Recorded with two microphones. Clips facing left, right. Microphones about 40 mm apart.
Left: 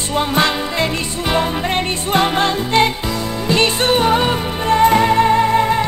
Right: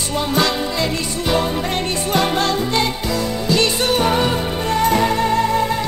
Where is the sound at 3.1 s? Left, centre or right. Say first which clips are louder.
Right 1 dB; centre.